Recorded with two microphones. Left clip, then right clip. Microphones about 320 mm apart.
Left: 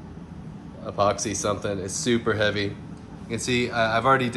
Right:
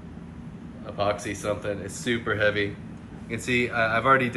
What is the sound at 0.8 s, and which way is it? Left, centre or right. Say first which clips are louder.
Speech: left 4 dB; centre.